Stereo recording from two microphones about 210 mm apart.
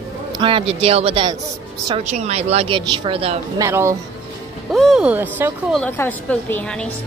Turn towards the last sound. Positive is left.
turn(degrees=10)  # may be behind; listen again after turning